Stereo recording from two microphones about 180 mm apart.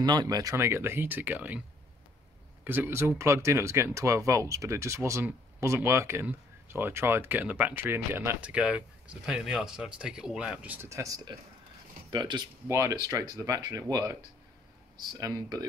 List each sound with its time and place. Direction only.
0.0 s speech: 25° right (ahead or behind)
2.6 s speech: 10° right (ahead or behind)